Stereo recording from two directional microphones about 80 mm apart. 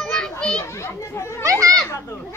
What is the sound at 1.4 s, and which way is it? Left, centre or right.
Speech, right.